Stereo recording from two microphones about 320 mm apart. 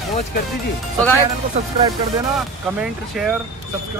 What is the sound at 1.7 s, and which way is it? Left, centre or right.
Speech, centre.